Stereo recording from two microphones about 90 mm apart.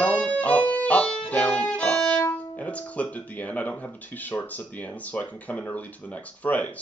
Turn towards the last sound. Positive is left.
turn(degrees=15)  # may be behind; listen again after turning